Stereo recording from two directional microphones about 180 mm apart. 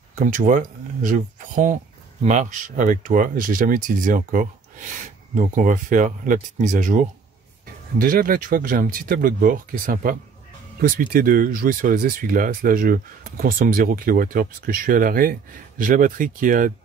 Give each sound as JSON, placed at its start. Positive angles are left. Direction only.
{"t": 0.1, "sound": "speech", "side_deg": -45}